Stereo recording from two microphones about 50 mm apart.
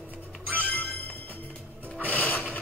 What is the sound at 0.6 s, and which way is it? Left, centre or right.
Music, left.